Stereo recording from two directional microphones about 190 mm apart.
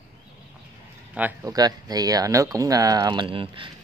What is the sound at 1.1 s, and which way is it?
Speech, 15° right (ahead or behind).